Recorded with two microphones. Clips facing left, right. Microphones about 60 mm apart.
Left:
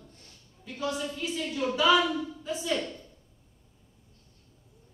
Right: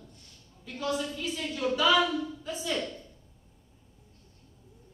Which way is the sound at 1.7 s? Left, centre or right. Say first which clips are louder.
Left 2 dB; left.